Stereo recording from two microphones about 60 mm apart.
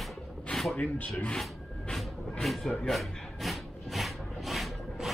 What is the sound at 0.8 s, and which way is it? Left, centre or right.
Speech, left.